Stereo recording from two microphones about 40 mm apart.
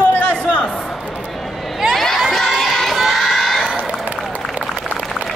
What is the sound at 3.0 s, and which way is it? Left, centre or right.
Children shouting, centre.